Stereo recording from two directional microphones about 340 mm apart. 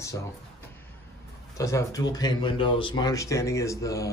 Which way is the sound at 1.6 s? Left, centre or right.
Centre.